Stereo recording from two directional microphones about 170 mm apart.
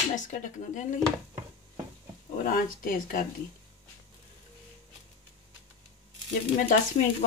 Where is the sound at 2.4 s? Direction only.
55° left (ahead or behind).